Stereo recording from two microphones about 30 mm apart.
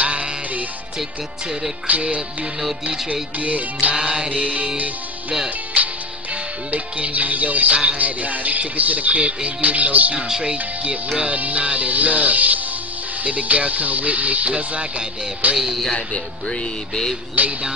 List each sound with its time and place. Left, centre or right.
0.0 s music: right
1.9 s music: right
3.9 s music: right
4.3 s music: right
9.2 s music: right
9.7 s music: right
10.1 s speech: right
10.5 s music: right
11.2 s music: right
15.4 s music: right
17.4 s music: right